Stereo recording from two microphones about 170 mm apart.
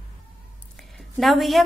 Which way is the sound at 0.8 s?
Centre (ahead or behind).